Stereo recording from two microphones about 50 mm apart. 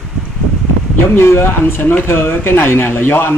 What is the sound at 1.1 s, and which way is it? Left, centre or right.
Speech, left.